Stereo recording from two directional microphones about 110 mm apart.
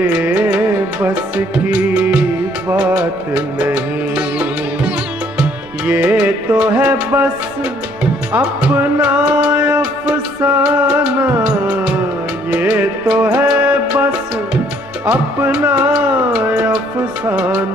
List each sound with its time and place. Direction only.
0.0 s music: 15° right (ahead or behind)
8.3 s music: 10° right (ahead or behind)
15.0 s music: 15° right (ahead or behind)